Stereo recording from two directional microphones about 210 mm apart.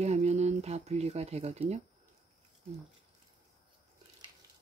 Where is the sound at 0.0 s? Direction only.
30° right (ahead or behind).